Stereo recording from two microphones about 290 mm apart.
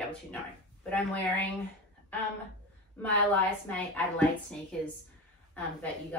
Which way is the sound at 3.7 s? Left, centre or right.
Centre.